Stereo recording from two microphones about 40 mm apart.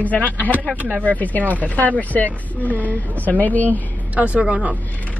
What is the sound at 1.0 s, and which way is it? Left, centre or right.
Speech, left.